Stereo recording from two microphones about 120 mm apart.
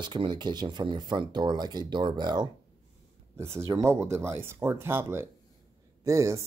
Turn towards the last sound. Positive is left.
turn(degrees=-25)  # may be behind; listen again after turning